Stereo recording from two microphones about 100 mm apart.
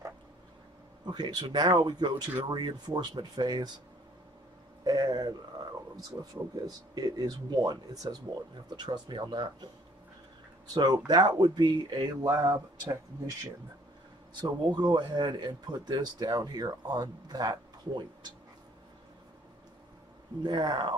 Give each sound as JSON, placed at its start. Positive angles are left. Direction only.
{"t": 1.0, "sound": "speech", "side_deg": -45}
{"t": 4.8, "sound": "a sound", "side_deg": -45}
{"t": 6.0, "sound": "speech", "side_deg": -40}
{"t": 10.7, "sound": "speech", "side_deg": -40}
{"t": 14.3, "sound": "speech", "side_deg": -45}
{"t": 20.4, "sound": "speech", "side_deg": -50}